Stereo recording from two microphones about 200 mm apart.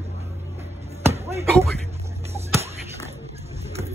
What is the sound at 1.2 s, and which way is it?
Speech, 15° right (ahead or behind).